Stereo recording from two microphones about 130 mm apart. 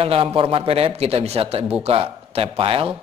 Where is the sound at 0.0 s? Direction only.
45° right (ahead or behind).